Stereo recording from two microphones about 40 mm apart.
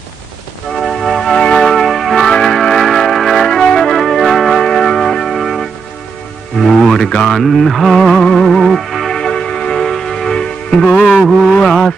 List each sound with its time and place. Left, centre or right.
0.7 s organ: centre
1.2 s music: centre
2.2 s music: centre
3.4 s music: centre
4.6 s music: centre
7.1 s speech: left
7.3 s music: centre
9.1 s music: left
10.9 s music: centre